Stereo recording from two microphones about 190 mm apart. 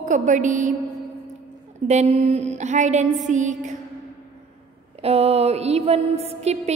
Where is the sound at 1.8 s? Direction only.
35° right (ahead or behind).